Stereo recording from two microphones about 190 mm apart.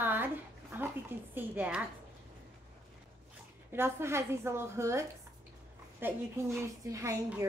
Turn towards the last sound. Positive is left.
turn(degrees=-15)  # may be behind; listen again after turning